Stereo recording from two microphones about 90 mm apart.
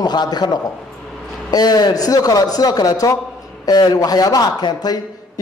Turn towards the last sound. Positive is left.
turn(degrees=45)  # may be behind; listen again after turning